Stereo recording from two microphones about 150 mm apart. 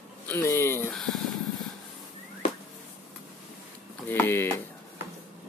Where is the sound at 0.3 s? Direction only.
15° left (ahead or behind).